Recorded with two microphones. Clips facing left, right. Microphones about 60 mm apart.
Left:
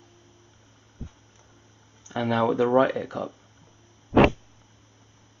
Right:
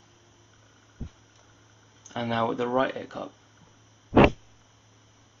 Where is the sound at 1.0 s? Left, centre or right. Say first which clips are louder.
Even; centre.